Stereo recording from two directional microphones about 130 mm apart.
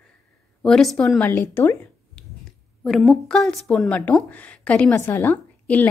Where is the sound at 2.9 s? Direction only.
Centre (ahead or behind).